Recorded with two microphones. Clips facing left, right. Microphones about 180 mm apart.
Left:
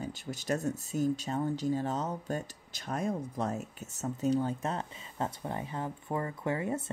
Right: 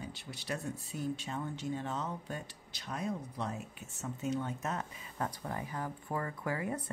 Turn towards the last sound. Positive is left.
turn(degrees=25)  # may be behind; listen again after turning